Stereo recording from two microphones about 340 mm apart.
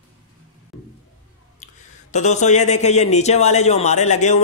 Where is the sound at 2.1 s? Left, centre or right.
Left.